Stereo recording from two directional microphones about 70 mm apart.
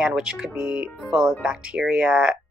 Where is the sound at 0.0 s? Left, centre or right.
Centre.